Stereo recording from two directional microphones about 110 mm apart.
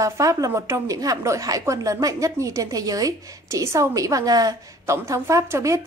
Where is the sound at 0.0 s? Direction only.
30° right (ahead or behind).